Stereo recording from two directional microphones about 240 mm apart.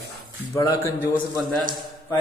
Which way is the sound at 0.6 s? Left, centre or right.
Centre.